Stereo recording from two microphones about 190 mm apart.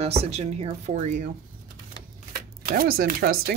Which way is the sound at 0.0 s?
35° right (ahead or behind).